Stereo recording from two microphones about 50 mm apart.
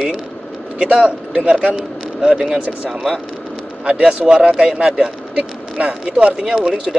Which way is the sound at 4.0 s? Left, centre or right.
Centre.